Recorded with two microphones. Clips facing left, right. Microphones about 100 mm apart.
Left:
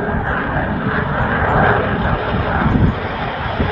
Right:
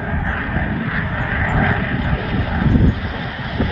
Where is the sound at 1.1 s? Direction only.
40° left (ahead or behind).